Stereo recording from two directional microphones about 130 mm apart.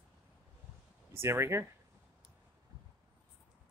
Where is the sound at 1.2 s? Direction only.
20° right (ahead or behind).